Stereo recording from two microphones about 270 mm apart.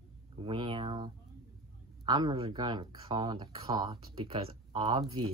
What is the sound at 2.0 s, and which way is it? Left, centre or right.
Speech, centre.